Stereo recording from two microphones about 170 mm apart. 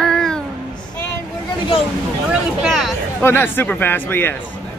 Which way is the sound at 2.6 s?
Centre (ahead or behind).